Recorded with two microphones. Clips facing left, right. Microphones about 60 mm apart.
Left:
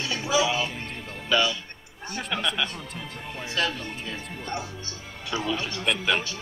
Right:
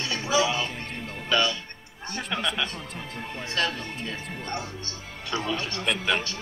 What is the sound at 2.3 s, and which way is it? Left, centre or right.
A man's voice, centre.